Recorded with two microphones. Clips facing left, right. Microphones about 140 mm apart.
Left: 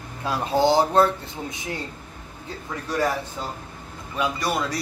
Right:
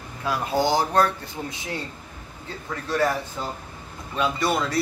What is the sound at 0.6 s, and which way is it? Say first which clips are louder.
Speech: left 4 dB; 25° left (ahead or behind).